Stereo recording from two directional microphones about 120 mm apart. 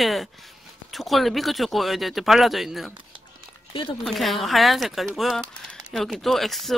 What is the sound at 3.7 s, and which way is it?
Speech, 45° left (ahead or behind).